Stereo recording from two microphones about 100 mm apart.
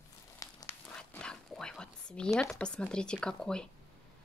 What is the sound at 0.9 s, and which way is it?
Pig, 10° left (ahead or behind).